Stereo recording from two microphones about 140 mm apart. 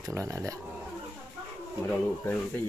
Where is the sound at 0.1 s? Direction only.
20° right (ahead or behind).